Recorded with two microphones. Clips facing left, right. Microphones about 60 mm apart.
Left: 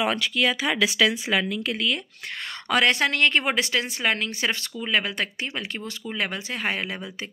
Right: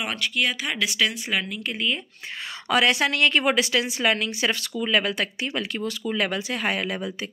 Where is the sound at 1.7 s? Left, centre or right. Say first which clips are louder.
Right 1 dB; left.